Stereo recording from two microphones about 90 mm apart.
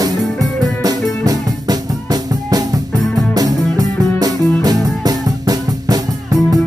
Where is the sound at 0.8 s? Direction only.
45° right (ahead or behind).